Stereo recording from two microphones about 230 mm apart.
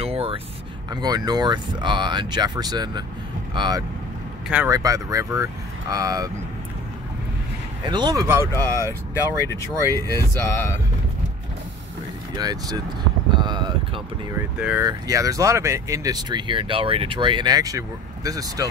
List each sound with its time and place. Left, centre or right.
0.0 s a sound: right
1.0 s speech: centre
7.8 s speech: centre
8.7 s speech: centre
9.8 s speech: centre
12.4 s speech: centre
13.4 s a sound: centre
14.6 s speech: centre